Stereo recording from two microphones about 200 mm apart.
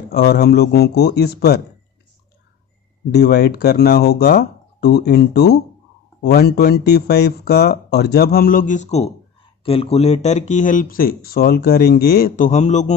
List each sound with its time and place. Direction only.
0.1 s speech: 50° left (ahead or behind)
3.1 s speech: 55° left (ahead or behind); by 12.9 s 35° left (ahead or behind)